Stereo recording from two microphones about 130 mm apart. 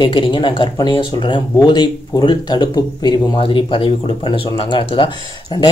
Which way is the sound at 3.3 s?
45° left (ahead or behind).